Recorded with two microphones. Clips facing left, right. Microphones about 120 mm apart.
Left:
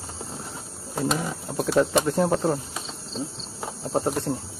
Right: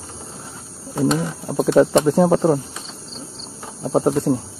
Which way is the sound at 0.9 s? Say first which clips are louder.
Right 7 dB; centre (ahead or behind).